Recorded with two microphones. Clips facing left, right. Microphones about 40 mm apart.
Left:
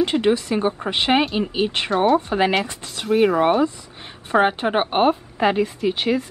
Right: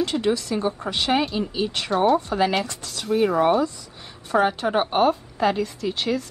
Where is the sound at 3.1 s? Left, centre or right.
Centre.